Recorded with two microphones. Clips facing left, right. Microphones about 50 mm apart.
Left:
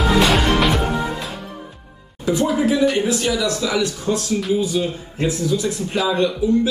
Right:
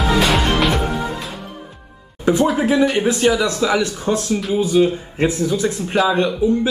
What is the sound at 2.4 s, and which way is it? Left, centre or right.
Speech, centre.